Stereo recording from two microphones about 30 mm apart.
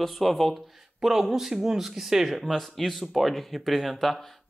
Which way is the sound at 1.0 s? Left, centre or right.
Centre.